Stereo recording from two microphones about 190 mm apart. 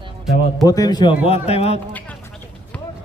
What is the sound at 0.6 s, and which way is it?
Speech, 20° left (ahead or behind).